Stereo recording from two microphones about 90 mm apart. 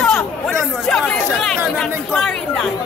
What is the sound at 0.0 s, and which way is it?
Chatter, 5° left (ahead or behind).